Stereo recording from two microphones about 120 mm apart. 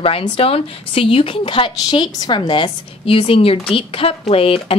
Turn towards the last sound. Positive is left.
turn(degrees=50)  # may be behind; listen again after turning